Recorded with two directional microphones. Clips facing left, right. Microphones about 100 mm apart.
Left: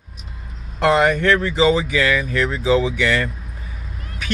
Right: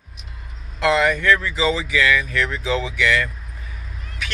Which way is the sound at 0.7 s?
45° left (ahead or behind).